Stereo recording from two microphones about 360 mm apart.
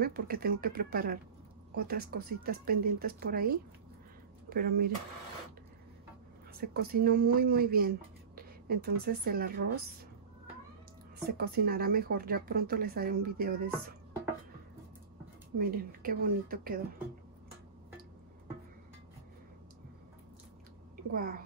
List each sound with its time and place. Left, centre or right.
0.0 s speech: right
4.5 s speech: right
6.6 s speech: right
8.4 s a sound: right
9.0 s speech: right
11.2 s speech: right
15.5 s speech: right
20.9 s a sound: right